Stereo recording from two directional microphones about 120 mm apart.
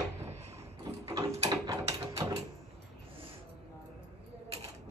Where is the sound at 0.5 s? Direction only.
25° right (ahead or behind).